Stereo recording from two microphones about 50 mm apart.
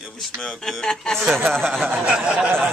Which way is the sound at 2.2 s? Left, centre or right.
Right.